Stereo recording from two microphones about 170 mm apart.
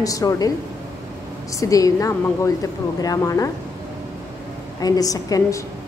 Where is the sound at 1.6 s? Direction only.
20° left (ahead or behind).